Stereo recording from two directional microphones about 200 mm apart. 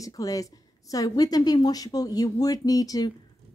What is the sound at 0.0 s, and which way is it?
A woman's voice, 15° left (ahead or behind).